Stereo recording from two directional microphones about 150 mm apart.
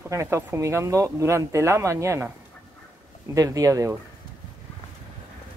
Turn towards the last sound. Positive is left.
turn(degrees=-20)  # may be behind; listen again after turning